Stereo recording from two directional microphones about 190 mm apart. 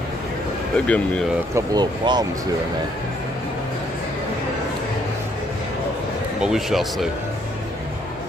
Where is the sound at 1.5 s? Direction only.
20° right (ahead or behind).